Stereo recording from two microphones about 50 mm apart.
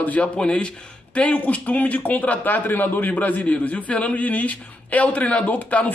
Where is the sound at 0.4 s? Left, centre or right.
Centre.